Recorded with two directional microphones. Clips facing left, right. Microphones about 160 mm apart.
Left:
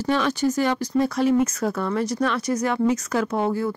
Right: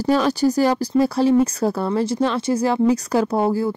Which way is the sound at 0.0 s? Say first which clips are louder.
Right 4 dB; 35° right (ahead or behind).